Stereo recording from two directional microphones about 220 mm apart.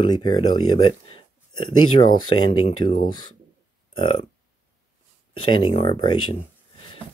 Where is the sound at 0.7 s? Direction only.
25° left (ahead or behind).